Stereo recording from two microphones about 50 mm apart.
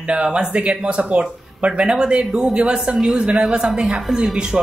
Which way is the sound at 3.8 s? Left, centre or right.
Centre.